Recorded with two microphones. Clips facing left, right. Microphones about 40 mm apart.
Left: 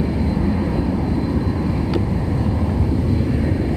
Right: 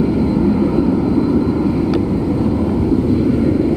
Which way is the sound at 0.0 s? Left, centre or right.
Centre.